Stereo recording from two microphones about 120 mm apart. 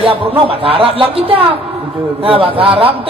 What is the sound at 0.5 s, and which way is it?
Music, 50° right (ahead or behind).